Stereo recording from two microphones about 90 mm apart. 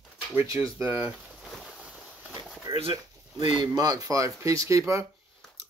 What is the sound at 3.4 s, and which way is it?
Speech, 50° right (ahead or behind).